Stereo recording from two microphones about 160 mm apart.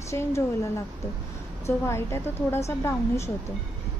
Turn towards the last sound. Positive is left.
turn(degrees=15)  # may be behind; listen again after turning